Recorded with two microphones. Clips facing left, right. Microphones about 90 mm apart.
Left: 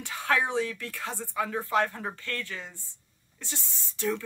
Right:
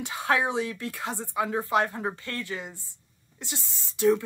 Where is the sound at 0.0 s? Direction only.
20° right (ahead or behind).